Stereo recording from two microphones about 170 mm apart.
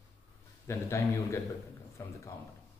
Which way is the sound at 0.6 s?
15° left (ahead or behind).